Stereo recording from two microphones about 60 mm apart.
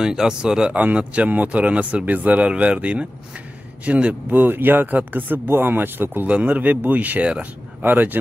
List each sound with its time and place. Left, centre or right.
0.0 s speech: centre
4.3 s speech: right
6.2 s speech: right